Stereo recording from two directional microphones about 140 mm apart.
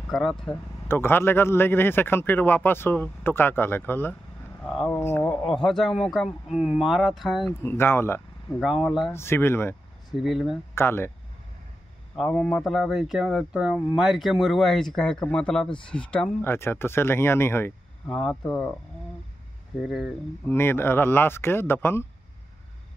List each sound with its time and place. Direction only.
0.1 s speech: centre (ahead or behind)
0.8 s speech: 15° left (ahead or behind)
5.5 s speech: 5° left (ahead or behind)
7.6 s speech: 15° left (ahead or behind)
8.5 s speech: centre (ahead or behind)
9.1 s speech: 15° left (ahead or behind)
10.1 s speech: centre (ahead or behind)
10.7 s speech: 15° left (ahead or behind)
12.3 s speech: 10° left (ahead or behind)
12.6 s speech: centre (ahead or behind); by 18.1 s 15° left (ahead or behind)
18.1 s speech: 5° left (ahead or behind)
19.8 s speech: 5° right (ahead or behind)
20.4 s speech: 15° left (ahead or behind)